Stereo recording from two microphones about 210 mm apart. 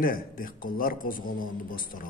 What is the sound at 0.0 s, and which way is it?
A man's voice, 45° left (ahead or behind).